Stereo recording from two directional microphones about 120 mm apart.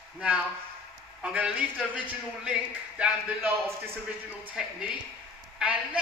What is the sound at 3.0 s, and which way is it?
A man's voice, 15° right (ahead or behind).